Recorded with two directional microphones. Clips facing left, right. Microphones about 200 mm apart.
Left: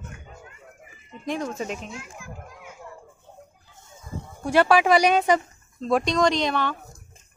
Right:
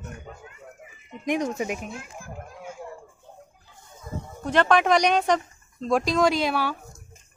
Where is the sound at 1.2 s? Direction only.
15° right (ahead or behind).